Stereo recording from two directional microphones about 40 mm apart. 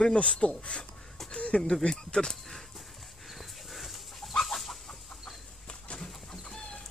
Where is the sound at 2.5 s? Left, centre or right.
Centre.